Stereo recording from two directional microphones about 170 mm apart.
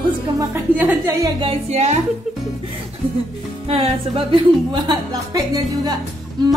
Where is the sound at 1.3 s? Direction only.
35° right (ahead or behind).